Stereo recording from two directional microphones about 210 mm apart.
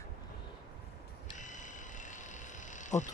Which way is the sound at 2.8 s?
35° left (ahead or behind).